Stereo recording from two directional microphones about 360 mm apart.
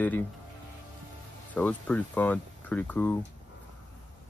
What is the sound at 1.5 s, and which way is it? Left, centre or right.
Speech, centre.